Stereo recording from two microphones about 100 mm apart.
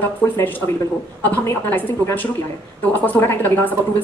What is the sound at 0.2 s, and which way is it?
Speech, 20° left (ahead or behind).